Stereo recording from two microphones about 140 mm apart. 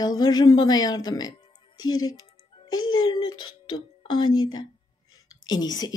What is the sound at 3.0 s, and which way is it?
A woman's voice, 30° left (ahead or behind).